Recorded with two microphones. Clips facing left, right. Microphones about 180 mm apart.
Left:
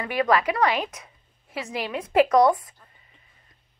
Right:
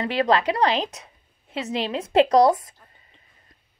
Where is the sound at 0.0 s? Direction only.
30° right (ahead or behind).